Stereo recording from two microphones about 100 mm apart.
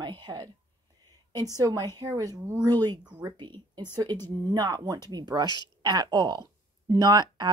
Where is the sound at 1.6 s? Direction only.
45° right (ahead or behind).